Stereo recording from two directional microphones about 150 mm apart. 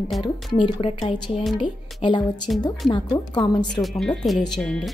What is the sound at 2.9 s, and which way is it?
Speech, 30° left (ahead or behind).